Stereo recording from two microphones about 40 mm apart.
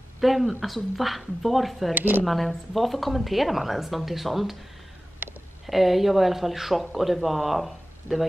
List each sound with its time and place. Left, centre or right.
0.2 s speech: centre
2.0 s speech: right
2.2 s speech: centre
5.7 s speech: centre